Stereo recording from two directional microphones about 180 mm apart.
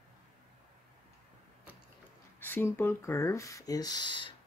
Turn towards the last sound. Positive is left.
turn(degrees=25)  # may be behind; listen again after turning